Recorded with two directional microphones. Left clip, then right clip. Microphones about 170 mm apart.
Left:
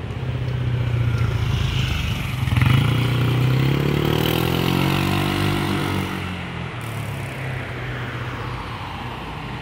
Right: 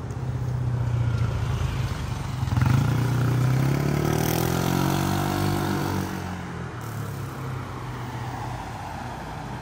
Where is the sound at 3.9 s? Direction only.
25° right (ahead or behind).